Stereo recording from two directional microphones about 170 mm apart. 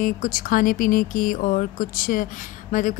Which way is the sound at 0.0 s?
55° left (ahead or behind).